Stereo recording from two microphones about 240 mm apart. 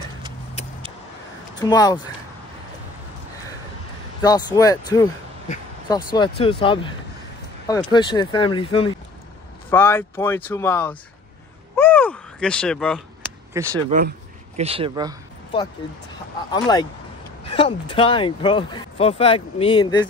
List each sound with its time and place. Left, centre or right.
1.6 s speech: centre
4.2 s speech: centre
6.1 s speech: left
9.7 s speech: centre
11.7 s a sound: centre
13.5 s speech: centre
13.8 s speech: right
14.6 s speech: right
16.5 s speech: centre